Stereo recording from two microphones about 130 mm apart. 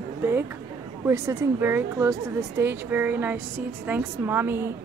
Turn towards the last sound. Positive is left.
turn(degrees=-15)  # may be behind; listen again after turning